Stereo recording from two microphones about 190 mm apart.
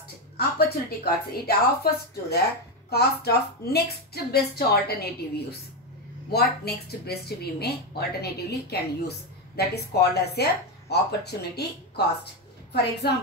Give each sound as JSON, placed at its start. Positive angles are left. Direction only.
{"t": 0.4, "sound": "a woman's voice", "side_deg": 55}
{"t": 13.0, "sound": "a woman's voice", "side_deg": 60}